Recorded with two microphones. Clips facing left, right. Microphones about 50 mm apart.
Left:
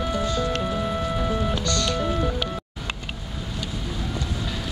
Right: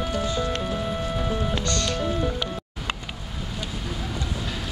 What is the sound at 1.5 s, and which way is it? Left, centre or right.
Music, right.